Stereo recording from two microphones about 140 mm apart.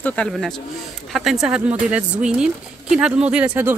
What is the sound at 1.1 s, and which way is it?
A woman's voice, centre (ahead or behind).